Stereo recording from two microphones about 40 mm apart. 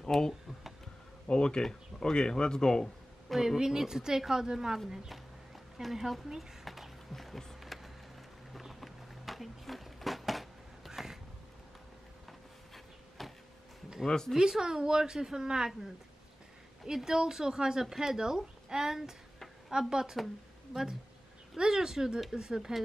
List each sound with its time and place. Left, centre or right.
0.1 s speech: centre
1.2 s speech: left
3.3 s speech: centre
7.6 s vehicle: centre
8.5 s a sound: centre
10.9 s a sound: centre
12.3 s a sound: centre
14.0 s speech: centre
14.4 s speech: centre